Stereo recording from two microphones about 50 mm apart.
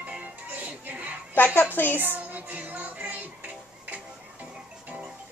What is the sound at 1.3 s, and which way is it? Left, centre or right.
Speech, left.